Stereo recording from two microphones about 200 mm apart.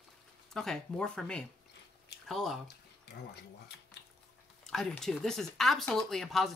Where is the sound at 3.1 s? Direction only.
55° left (ahead or behind).